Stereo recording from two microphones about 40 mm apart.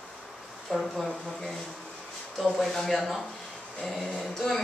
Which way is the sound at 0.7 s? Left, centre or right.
Centre.